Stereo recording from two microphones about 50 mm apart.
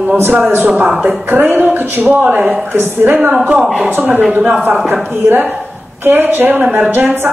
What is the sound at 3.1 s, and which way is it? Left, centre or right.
Speech, right.